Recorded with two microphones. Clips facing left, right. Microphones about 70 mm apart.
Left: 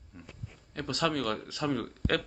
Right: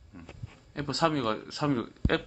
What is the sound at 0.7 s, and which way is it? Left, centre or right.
Speech, right.